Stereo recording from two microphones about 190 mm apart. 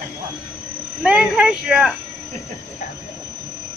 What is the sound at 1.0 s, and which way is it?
Speech, 5° right (ahead or behind).